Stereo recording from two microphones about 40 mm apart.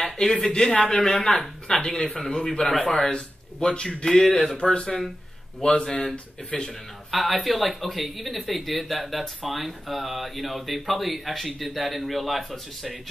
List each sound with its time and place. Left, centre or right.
0.0 s speech: centre
3.1 s speech: centre
7.1 s speech: centre